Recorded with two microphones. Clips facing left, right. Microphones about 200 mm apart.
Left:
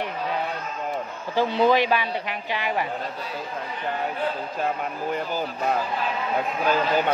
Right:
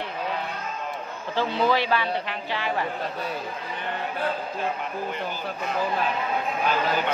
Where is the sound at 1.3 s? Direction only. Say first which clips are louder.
Left 3 dB; 15° left (ahead or behind).